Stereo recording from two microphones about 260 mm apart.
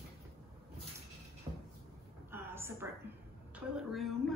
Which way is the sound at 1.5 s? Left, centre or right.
Right.